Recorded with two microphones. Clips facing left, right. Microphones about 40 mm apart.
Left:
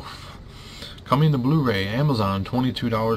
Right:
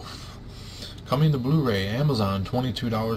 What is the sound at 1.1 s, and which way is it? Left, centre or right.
Speech, centre.